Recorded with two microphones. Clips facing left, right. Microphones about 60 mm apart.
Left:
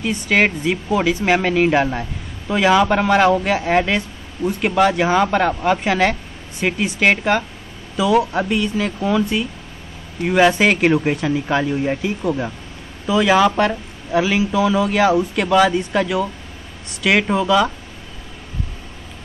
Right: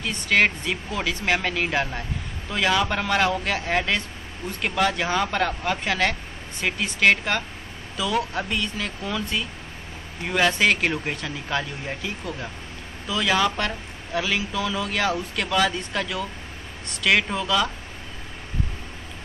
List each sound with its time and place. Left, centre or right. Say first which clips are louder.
0.0 s a man's voice: left 4 dB; centre